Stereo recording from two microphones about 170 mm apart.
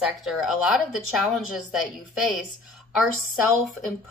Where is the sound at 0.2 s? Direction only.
Centre (ahead or behind).